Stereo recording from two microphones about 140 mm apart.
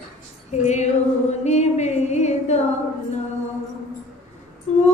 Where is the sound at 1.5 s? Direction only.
55° left (ahead or behind).